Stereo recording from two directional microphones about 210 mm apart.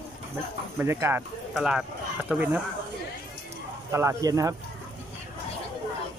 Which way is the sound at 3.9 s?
15° right (ahead or behind).